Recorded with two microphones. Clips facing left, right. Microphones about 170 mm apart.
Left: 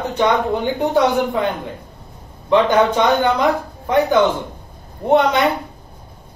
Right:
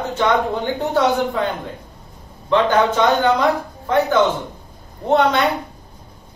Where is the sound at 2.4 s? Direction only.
15° left (ahead or behind).